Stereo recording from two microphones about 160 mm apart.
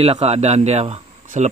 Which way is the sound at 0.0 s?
40° right (ahead or behind).